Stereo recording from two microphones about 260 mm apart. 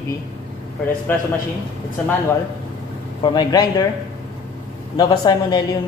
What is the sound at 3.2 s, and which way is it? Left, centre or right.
Speech, centre.